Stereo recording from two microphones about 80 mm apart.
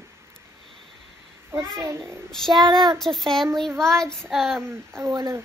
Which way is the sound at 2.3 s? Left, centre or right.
Centre.